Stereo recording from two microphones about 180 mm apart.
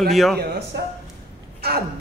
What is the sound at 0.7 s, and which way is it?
Speech, 70° right (ahead or behind).